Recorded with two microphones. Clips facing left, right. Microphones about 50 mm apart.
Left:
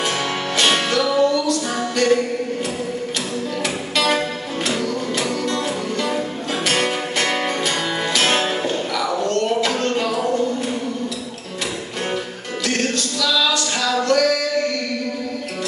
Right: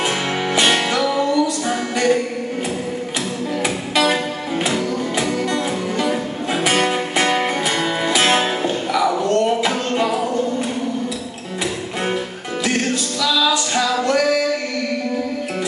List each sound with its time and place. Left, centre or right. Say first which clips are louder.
0.6 s music: even; right
3.6 s music: right 3 dB; centre
13.2 s music: right 2 dB; centre